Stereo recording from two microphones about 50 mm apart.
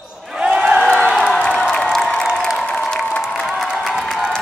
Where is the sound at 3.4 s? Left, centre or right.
Centre.